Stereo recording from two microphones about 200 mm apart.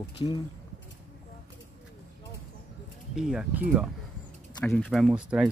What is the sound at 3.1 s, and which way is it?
Speech, 5° right (ahead or behind).